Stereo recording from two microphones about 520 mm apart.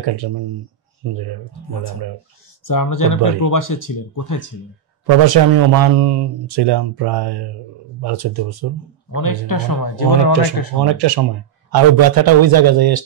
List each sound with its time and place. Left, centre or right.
0.0 s a man's voice: right
1.7 s speech: left
5.0 s a man's voice: right
9.1 s speech: left
10.8 s a man's voice: right